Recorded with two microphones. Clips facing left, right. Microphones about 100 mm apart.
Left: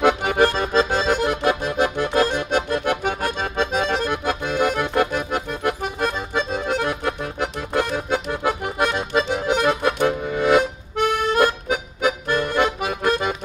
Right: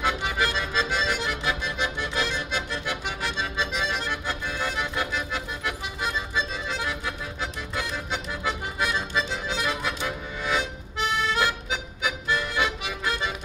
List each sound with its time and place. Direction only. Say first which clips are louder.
0.0 s accordion: left 9 dB; 55° left (ahead or behind)